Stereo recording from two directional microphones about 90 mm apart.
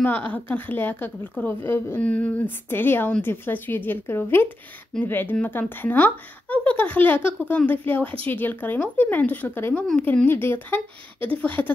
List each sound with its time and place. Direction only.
0.0 s a woman's voice: 15° left (ahead or behind)